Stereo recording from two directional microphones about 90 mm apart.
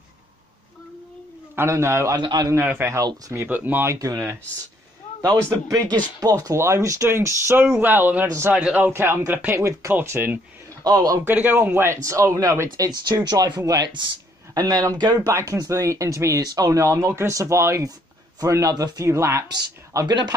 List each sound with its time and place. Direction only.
1.5 s speech: 30° right (ahead or behind)
2.1 s a man's voice: 50° right (ahead or behind)
2.6 s speech: 20° right (ahead or behind)
3.9 s speech: 35° right (ahead or behind)
5.2 s speech: 45° right (ahead or behind); by 10.3 s 25° right (ahead or behind)
10.8 s a man's voice: 45° right (ahead or behind)
11.2 s speech: 25° right (ahead or behind)
12.0 s speech: 35° right (ahead or behind); by 13.6 s 55° right (ahead or behind)
13.6 s speech: 40° right (ahead or behind)
19.5 s speech: 45° right (ahead or behind)